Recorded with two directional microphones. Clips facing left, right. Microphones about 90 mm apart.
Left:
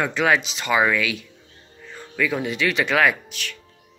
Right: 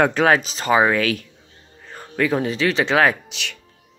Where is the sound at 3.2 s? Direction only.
90° right.